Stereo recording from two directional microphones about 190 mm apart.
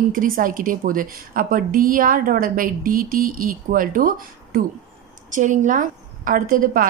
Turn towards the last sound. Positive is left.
turn(degrees=-50)  # may be behind; listen again after turning